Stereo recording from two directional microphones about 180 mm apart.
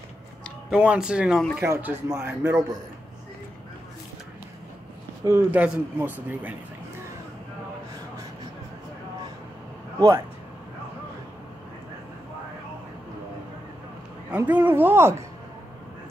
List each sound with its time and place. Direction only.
0.7 s speech: 5° right (ahead or behind)
5.2 s speech: 10° right (ahead or behind)
9.9 s speech: 20° right (ahead or behind)
14.3 s speech: 10° right (ahead or behind)